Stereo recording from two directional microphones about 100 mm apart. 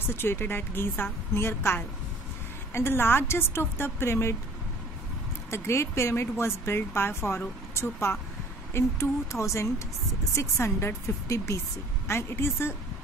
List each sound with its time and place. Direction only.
0.0 s speech: 25° left (ahead or behind)
5.5 s a woman's voice: 25° left (ahead or behind)